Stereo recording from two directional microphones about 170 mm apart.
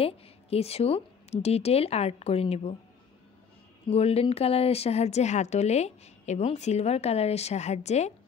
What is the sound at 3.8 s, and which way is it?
Speech, 35° left (ahead or behind).